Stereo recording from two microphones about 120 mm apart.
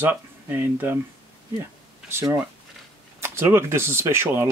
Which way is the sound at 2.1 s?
25° right (ahead or behind).